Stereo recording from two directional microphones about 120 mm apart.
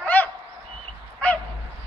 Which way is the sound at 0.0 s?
15° left (ahead or behind).